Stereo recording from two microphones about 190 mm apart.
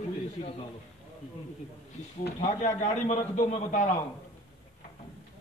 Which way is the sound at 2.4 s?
40° left (ahead or behind).